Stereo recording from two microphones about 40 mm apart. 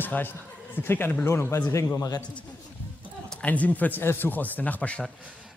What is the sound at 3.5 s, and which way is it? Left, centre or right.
Speech, left.